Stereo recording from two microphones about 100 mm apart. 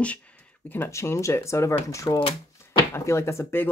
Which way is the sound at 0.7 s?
25° left (ahead or behind).